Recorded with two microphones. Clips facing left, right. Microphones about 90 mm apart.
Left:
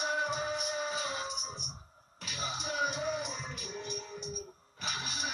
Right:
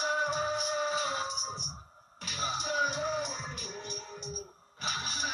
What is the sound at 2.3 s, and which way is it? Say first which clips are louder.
Music: right 4 dB; 35° right (ahead or behind).